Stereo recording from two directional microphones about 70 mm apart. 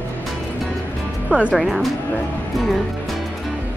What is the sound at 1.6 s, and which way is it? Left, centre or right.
Music, centre.